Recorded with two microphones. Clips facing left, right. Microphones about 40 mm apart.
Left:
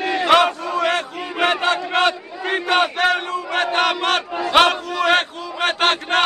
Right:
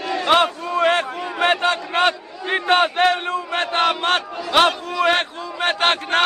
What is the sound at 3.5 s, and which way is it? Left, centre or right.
Battle cry, centre.